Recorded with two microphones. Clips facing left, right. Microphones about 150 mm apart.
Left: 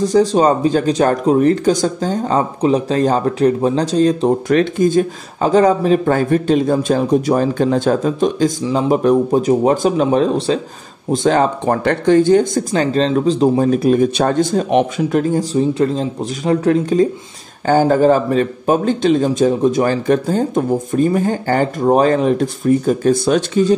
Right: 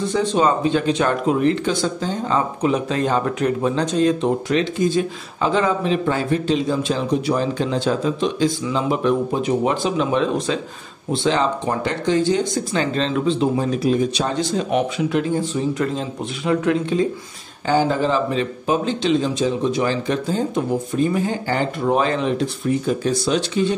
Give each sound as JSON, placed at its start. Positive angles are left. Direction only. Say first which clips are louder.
{"t": 0.0, "sound": "speech", "louder": "left 6 dB", "side_deg": 35}
{"t": 4.5, "sound": "speech", "louder": "left 5 dB", "side_deg": 50}
{"t": 11.1, "sound": "speech", "louder": "left 5 dB", "side_deg": 50}